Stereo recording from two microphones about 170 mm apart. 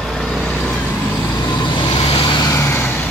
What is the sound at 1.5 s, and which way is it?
Vehicle, 25° left (ahead or behind).